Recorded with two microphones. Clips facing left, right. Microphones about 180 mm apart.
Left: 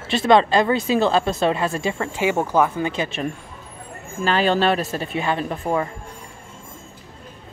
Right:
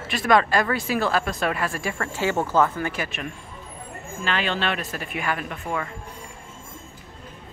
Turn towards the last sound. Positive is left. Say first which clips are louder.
# left 7 dB
turn(degrees=30)  # may be behind; listen again after turning